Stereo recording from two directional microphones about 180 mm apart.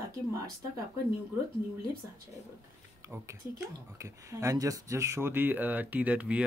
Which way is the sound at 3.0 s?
15° right (ahead or behind).